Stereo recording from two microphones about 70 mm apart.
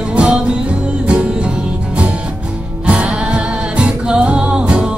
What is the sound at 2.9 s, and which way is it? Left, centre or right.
Music, centre.